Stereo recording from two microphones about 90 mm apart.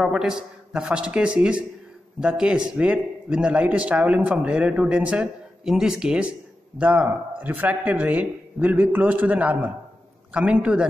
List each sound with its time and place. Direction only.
0.0 s a man's voice: 5° right (ahead or behind)